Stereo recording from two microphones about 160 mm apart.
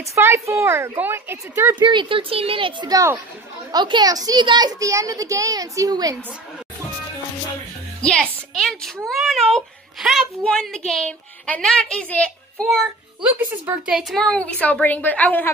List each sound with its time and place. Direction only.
0.0 s a child's voice: 15° right (ahead or behind)
1.8 s a child's voice: 30° right (ahead or behind)
8.0 s a woman's voice: 5° left (ahead or behind)